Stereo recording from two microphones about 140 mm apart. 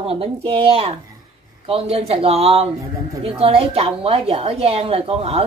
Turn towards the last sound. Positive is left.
turn(degrees=-45)  # may be behind; listen again after turning